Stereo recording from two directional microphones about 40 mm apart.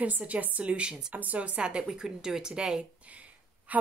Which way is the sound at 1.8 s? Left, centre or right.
Centre.